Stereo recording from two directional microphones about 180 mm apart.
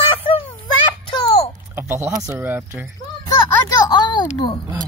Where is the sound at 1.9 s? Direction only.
15° right (ahead or behind).